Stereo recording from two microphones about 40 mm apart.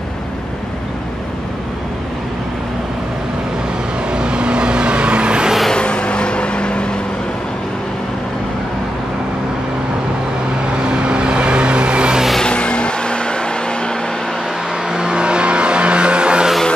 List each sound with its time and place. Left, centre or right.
4.1 s vehicle: right
5.7 s vehicle: left
10.9 s vehicle: right
12.4 s vehicle: left
14.9 s vehicle: right